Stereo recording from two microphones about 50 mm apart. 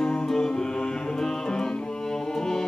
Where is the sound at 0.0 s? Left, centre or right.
Centre.